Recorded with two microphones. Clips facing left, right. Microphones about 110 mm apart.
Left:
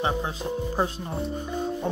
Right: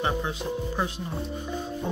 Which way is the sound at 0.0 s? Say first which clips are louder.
Left 1 dB; 30° left (ahead or behind).